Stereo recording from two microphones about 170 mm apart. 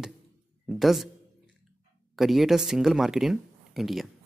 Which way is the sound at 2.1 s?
Centre (ahead or behind).